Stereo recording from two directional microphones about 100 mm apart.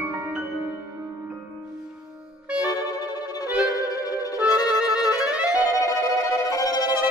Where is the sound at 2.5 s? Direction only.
40° left (ahead or behind).